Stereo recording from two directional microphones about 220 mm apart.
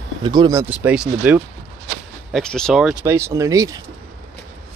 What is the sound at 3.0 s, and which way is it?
Speech, 10° right (ahead or behind).